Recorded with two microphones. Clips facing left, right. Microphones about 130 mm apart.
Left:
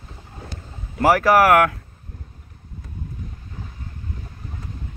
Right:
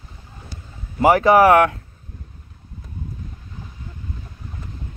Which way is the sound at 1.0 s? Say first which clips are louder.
Right 2 dB; 25° right (ahead or behind).